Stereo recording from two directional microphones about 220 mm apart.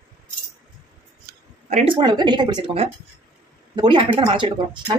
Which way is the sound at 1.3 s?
40° right (ahead or behind).